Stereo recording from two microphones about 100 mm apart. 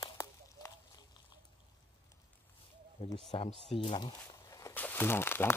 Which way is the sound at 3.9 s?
50° left (ahead or behind).